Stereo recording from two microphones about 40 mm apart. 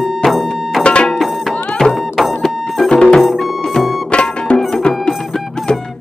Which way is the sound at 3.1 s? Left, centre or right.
Centre.